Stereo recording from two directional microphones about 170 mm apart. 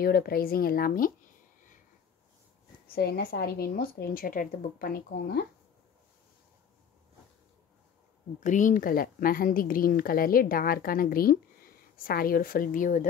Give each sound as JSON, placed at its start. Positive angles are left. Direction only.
{"t": 0.0, "sound": "a woman's voice", "side_deg": 65}
{"t": 2.9, "sound": "a woman's voice", "side_deg": 65}
{"t": 8.4, "sound": "a woman's voice", "side_deg": 50}